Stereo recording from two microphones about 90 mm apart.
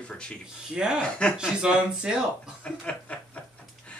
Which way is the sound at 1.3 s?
10° right (ahead or behind).